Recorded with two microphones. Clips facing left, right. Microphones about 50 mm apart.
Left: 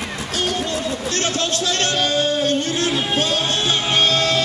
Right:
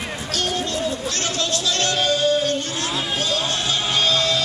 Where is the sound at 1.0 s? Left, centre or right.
Left.